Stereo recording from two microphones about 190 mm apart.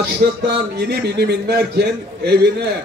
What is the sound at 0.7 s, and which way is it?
A man's voice, 60° right (ahead or behind).